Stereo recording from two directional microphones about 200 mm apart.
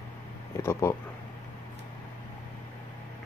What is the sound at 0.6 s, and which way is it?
Speech, 15° left (ahead or behind).